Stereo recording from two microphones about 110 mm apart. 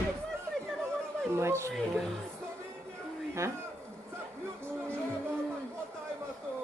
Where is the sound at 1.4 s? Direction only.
25° right (ahead or behind).